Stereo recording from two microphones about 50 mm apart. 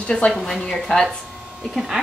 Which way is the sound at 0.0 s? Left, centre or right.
Left.